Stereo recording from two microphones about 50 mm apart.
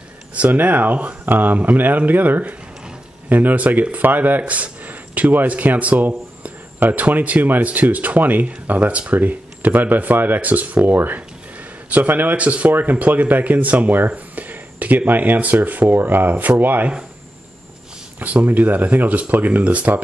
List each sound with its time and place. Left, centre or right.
0.3 s speech: right
12.4 s speech: right
18.2 s speech: right